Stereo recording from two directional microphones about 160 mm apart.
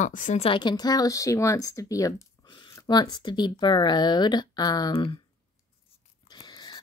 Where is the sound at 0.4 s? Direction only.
30° left (ahead or behind).